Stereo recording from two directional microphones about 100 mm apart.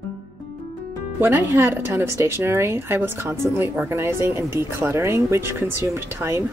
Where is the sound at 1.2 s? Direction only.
25° right (ahead or behind).